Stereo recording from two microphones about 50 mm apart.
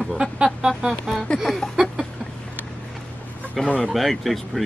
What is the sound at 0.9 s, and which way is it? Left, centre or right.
Speech, centre.